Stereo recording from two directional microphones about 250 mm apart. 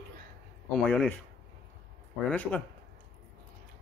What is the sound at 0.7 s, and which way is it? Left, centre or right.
Speech, centre.